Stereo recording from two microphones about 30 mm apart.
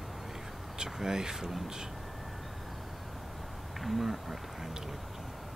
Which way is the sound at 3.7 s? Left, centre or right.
Centre.